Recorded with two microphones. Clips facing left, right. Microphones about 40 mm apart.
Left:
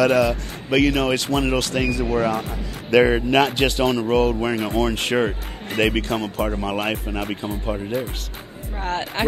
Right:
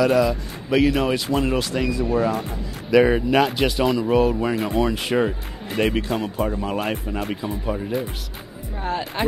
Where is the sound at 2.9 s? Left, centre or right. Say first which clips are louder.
Even; centre.